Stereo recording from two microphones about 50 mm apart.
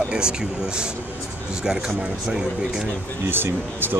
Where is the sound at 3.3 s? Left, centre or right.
Right.